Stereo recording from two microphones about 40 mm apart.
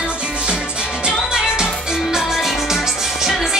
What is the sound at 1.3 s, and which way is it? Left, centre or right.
Music, centre.